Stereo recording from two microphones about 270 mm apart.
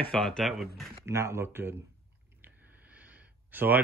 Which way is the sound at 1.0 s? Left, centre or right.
Centre.